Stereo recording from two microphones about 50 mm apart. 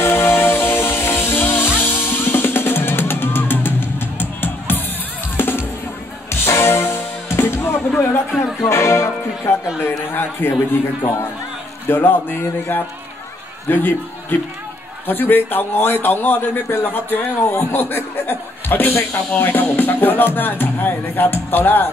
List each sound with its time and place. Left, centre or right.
0.0 s music: left
8.6 s speech: left
9.8 s speech: left
11.9 s a man's voice: left